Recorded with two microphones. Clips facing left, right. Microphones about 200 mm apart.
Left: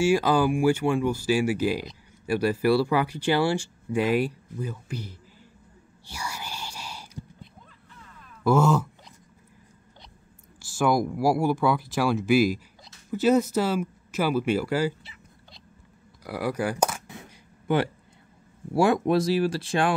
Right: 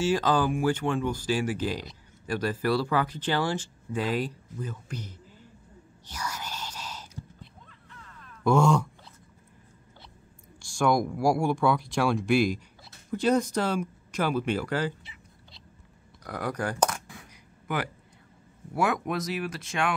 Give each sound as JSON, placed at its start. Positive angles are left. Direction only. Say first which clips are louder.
{"t": 0.0, "sound": "speech", "louder": "left 3 dB", "side_deg": 10}
{"t": 6.0, "sound": "whispering", "louder": "even", "side_deg": 10}
{"t": 8.5, "sound": "speech", "louder": "left 1 dB", "side_deg": 5}
{"t": 10.6, "sound": "speech", "louder": "left 1 dB", "side_deg": 5}
{"t": 16.3, "sound": "speech", "louder": "left 4 dB", "side_deg": 10}
{"t": 17.1, "sound": "a sound", "louder": "left 5 dB", "side_deg": 25}
{"t": 18.7, "sound": "speech", "louder": "left 7 dB", "side_deg": 30}